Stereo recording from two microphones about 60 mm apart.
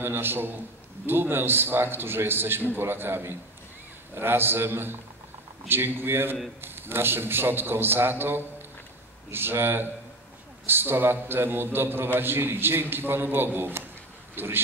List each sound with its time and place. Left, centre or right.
0.0 s a man's voice: right